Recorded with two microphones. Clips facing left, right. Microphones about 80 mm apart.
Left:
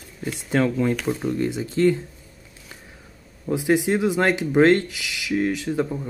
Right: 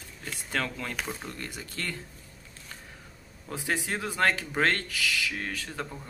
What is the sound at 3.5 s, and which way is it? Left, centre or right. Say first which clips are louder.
Speech: left 12 dB; centre.